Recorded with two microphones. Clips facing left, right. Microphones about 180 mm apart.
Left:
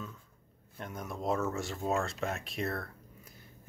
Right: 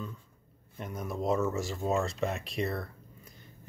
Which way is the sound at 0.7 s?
Centre (ahead or behind).